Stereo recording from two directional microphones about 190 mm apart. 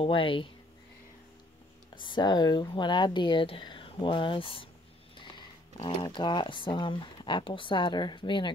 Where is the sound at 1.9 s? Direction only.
25° left (ahead or behind).